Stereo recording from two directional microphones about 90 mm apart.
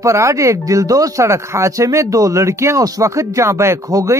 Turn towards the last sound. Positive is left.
turn(degrees=-35)  # may be behind; listen again after turning